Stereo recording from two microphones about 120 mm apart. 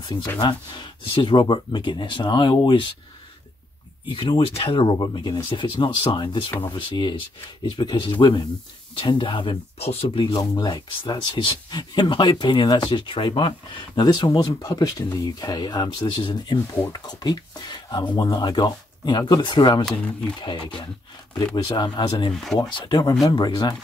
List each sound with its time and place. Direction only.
0.0 s speech: 35° left (ahead or behind)
4.1 s speech: 45° left (ahead or behind)
9.8 s speech: 55° left (ahead or behind)
10.3 s speech: 35° left (ahead or behind)
19.8 s speech: 5° left (ahead or behind)
20.4 s speech: 40° left (ahead or behind)
22.3 s speech: 5° left (ahead or behind)
22.6 s speech: 40° left (ahead or behind)